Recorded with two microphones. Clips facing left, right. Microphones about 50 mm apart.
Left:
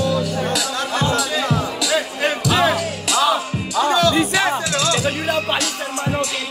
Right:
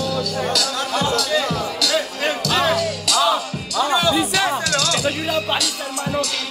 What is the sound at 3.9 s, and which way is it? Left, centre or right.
Music, centre.